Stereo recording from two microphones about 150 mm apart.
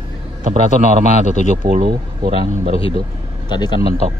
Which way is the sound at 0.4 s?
50° right (ahead or behind).